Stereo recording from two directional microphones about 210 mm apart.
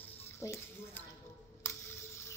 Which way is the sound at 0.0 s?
10° left (ahead or behind).